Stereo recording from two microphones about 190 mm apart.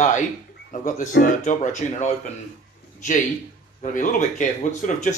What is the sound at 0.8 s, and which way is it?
Speech, 45° left (ahead or behind).